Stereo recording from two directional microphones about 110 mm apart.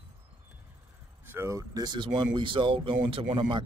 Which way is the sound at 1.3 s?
25° right (ahead or behind).